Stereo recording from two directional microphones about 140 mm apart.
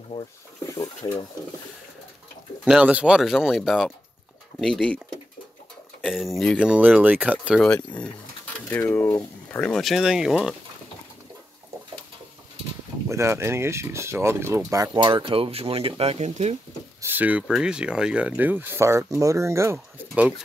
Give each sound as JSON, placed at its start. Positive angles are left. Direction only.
{"t": 0.1, "sound": "speech", "side_deg": 25}
{"t": 2.6, "sound": "speech", "side_deg": -10}
{"t": 6.0, "sound": "speech", "side_deg": 0}
{"t": 6.6, "sound": "speech", "side_deg": -10}
{"t": 7.6, "sound": "speech", "side_deg": 5}
{"t": 13.1, "sound": "speech", "side_deg": -20}
{"t": 14.7, "sound": "speech", "side_deg": -30}
{"t": 17.0, "sound": "speech", "side_deg": -15}